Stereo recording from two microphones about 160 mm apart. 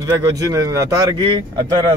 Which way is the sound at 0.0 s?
20° right (ahead or behind).